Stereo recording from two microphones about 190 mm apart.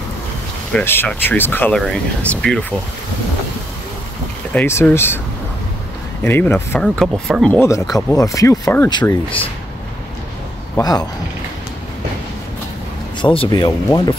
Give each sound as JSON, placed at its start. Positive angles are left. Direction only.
{"t": 0.7, "sound": "speech", "side_deg": 10}
{"t": 4.6, "sound": "speech", "side_deg": 10}
{"t": 6.2, "sound": "speech", "side_deg": 10}
{"t": 10.8, "sound": "speech", "side_deg": 20}
{"t": 13.2, "sound": "speech", "side_deg": 25}